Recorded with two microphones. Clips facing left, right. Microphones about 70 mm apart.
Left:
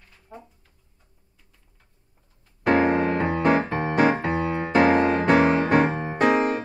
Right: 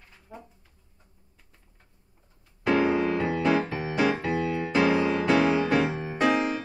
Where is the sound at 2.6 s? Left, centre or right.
Left.